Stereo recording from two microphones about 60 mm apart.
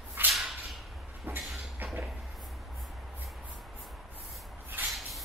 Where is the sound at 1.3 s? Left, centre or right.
Right.